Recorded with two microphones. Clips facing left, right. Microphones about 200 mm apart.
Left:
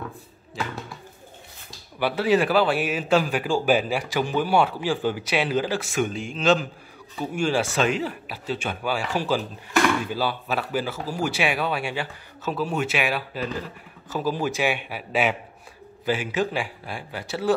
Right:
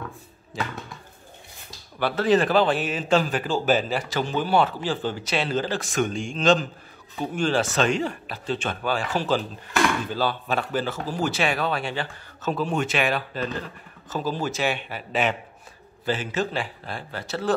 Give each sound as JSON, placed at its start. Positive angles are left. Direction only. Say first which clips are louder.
{"t": 2.0, "sound": "a man's voice", "louder": "even", "side_deg": 10}